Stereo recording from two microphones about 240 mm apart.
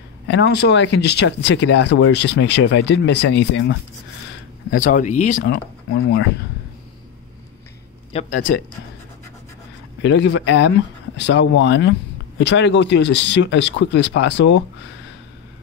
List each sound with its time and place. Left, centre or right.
0.3 s speech: left
4.6 s speech: left
8.1 s speech: left
10.0 s speech: left